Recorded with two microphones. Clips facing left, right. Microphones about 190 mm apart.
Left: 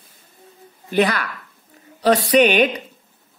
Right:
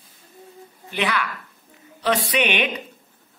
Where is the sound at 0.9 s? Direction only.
40° left (ahead or behind).